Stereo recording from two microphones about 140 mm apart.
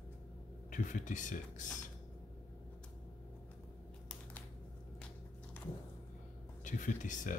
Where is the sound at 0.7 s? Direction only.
65° left (ahead or behind).